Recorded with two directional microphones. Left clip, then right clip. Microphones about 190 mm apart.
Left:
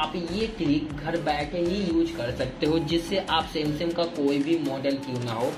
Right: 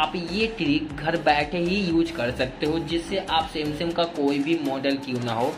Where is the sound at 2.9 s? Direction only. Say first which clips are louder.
Even; 15° left (ahead or behind).